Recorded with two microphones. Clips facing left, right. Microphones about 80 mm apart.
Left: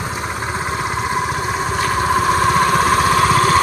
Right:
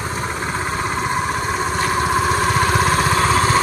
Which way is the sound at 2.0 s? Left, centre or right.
Centre.